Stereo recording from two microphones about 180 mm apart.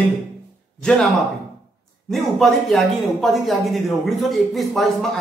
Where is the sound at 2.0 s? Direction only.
Centre (ahead or behind).